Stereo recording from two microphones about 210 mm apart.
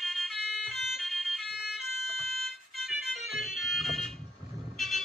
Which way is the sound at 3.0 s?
Centre (ahead or behind).